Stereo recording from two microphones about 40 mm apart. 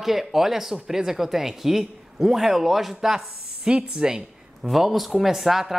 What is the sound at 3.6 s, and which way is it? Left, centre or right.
Speech, right.